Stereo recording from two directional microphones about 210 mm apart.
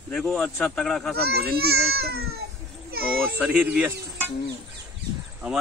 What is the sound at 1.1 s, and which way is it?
A child's voice, 50° right (ahead or behind).